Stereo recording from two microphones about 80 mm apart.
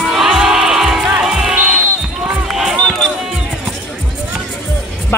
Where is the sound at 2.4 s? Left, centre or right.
Centre.